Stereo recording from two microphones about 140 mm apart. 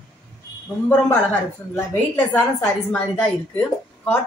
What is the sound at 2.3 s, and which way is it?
A woman's voice, 15° left (ahead or behind).